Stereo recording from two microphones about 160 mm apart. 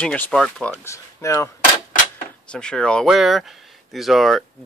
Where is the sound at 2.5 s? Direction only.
5° left (ahead or behind).